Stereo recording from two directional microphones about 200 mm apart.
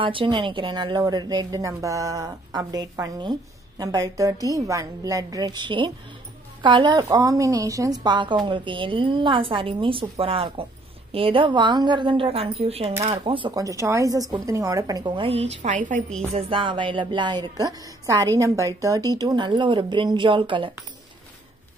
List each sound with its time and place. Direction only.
0.0 s a woman's voice: 25° right (ahead or behind)
16.3 s a woman's voice: 25° right (ahead or behind)